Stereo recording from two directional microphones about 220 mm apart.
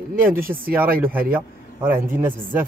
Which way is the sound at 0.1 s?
40° right (ahead or behind).